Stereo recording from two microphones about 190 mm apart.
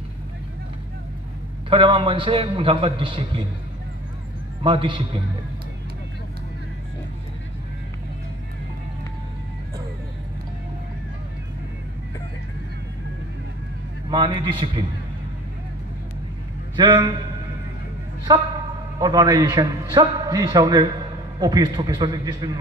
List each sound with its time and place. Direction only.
1.7 s a man's voice: 25° right (ahead or behind)
4.6 s a man's voice: 25° right (ahead or behind)
14.1 s a man's voice: 25° right (ahead or behind)
16.7 s a man's voice: 25° right (ahead or behind)
18.3 s a man's voice: 20° right (ahead or behind)